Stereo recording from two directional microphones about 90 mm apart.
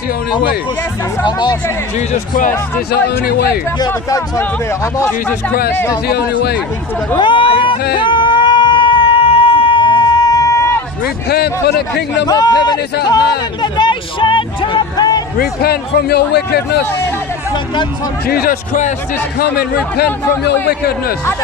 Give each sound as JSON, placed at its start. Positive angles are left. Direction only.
{"t": 1.2, "sound": "speech", "side_deg": 55}
{"t": 7.2, "sound": "a sound", "side_deg": 65}
{"t": 12.3, "sound": "speech", "side_deg": 45}